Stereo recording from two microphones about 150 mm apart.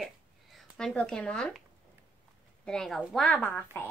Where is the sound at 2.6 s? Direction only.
5° left (ahead or behind).